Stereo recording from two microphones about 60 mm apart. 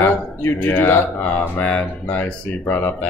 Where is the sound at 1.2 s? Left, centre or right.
Left.